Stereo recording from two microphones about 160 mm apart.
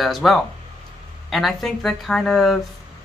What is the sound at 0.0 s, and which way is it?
Speech, centre (ahead or behind).